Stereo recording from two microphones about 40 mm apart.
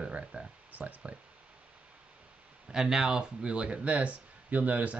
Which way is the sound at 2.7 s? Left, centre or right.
Centre.